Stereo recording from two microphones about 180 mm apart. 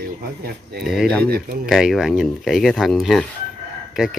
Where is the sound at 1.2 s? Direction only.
55° right (ahead or behind).